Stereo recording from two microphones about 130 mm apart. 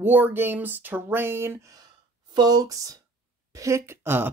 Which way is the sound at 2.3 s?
30° right (ahead or behind).